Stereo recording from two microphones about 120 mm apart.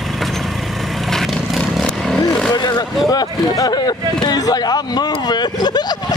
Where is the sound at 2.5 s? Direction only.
35° left (ahead or behind).